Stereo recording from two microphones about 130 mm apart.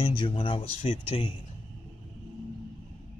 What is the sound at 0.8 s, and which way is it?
Speech, 55° left (ahead or behind).